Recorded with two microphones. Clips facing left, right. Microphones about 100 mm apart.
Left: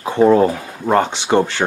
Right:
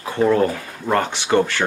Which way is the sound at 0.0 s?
25° left (ahead or behind).